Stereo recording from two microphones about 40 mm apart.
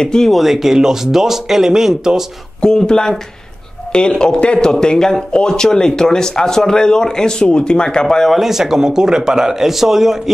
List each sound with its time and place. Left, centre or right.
0.0 s speech: centre
0.3 s speech: centre
2.6 s speech: centre
8.3 s speech: centre